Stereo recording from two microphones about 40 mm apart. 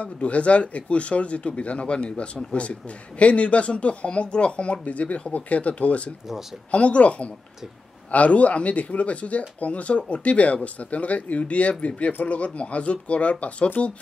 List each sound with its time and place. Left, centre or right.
0.0 s speech: left